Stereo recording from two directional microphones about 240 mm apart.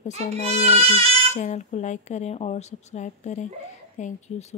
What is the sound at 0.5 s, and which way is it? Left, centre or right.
Speech, right.